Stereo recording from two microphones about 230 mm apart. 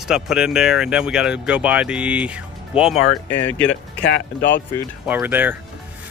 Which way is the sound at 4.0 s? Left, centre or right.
Left.